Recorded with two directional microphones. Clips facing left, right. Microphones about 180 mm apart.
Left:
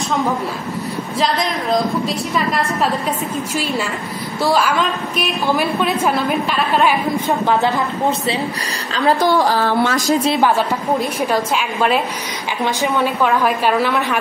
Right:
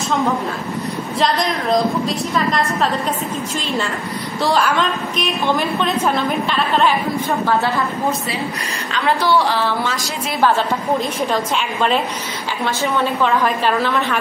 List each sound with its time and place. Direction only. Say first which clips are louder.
1.2 s a woman's voice: right 1 dB; centre (ahead or behind); by 7.8 s 20° left (ahead or behind)
8.9 s a woman's voice: left 2 dB; 40° left (ahead or behind)
10.3 s a woman's voice: left 1 dB; 15° left (ahead or behind)